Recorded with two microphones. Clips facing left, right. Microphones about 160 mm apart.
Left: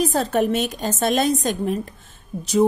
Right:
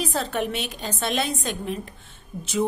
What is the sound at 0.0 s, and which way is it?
A woman's voice, 40° left (ahead or behind).